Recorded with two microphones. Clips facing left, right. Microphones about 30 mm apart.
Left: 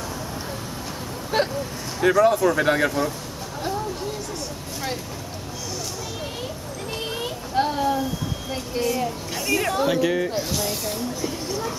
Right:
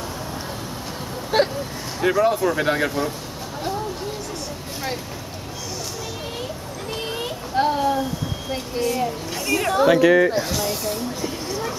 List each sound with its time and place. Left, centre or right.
2.0 s speech: centre
7.1 s a sound: centre
8.5 s speech: centre
9.8 s speech: right
10.5 s speech: centre
11.2 s music: centre